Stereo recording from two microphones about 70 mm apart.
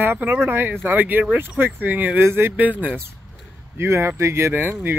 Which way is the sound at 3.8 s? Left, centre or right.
Right.